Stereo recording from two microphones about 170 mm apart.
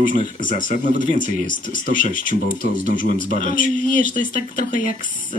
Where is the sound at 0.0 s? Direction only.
50° left (ahead or behind).